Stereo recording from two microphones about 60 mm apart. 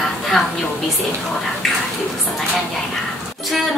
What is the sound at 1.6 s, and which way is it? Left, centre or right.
Bathtub, centre.